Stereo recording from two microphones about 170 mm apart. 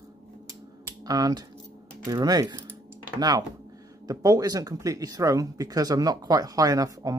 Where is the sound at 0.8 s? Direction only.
20° right (ahead or behind).